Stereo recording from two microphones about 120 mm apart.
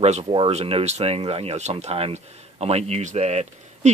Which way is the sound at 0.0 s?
55° right (ahead or behind).